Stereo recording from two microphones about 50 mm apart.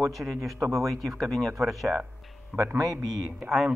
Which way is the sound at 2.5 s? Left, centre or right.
Right.